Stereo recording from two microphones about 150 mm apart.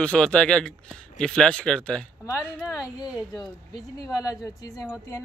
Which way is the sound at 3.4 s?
25° left (ahead or behind).